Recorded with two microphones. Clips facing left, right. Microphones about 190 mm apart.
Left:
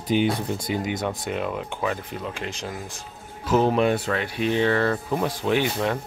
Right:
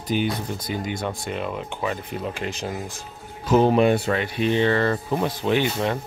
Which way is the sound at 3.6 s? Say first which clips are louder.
Right 3 dB; 5° right (ahead or behind).